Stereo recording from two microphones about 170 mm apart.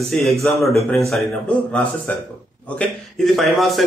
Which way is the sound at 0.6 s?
15° left (ahead or behind).